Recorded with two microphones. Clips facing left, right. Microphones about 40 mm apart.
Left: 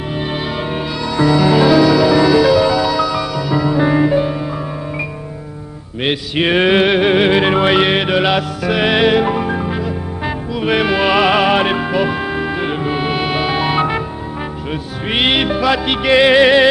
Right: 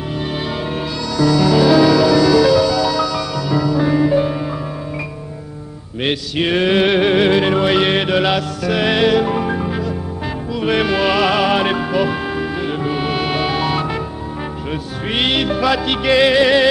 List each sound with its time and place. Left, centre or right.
0.6 s music: centre
1.7 s music: centre; by 4.1 s left
4.1 s music: centre
6.3 s a sound: left
6.8 s music: centre
9.3 s music: centre
15.0 s music: left